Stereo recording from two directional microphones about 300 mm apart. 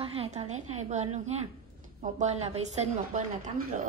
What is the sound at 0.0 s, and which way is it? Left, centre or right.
A woman's voice, centre.